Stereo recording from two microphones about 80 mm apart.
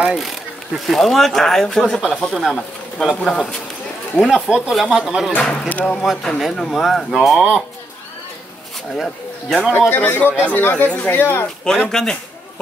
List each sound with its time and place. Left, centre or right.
0.0 s speech: centre
4.2 s speech: centre
5.4 s speech: centre
6.0 s speech: centre
8.9 s speech: centre
9.8 s speech: left
11.9 s speech: centre